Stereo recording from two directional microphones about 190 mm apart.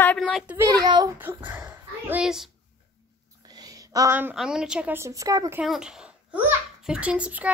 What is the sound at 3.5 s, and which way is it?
A woman's voice, 20° right (ahead or behind).